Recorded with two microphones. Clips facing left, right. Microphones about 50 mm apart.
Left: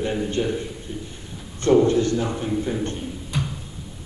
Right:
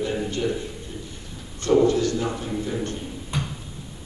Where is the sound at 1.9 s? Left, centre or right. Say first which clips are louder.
Left 2 dB; left.